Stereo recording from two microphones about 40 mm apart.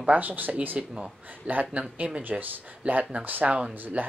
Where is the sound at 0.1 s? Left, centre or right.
Right.